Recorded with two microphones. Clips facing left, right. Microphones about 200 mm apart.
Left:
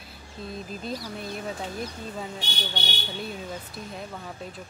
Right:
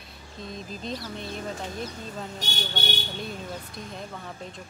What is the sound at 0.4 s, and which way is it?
Speech, 5° left (ahead or behind).